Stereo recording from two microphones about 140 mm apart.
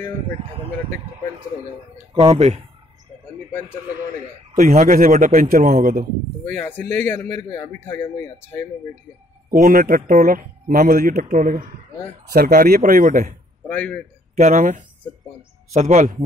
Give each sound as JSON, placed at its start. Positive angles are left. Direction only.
{"t": 0.0, "sound": "a man's voice", "side_deg": -55}
{"t": 2.3, "sound": "a man's voice", "side_deg": -55}
{"t": 4.6, "sound": "a man's voice", "side_deg": -60}
{"t": 6.5, "sound": "speech", "side_deg": 15}
{"t": 9.5, "sound": "speech", "side_deg": -90}
{"t": 12.4, "sound": "speech", "side_deg": -90}
{"t": 13.7, "sound": "speech", "side_deg": 10}
{"t": 14.3, "sound": "a man's voice", "side_deg": -55}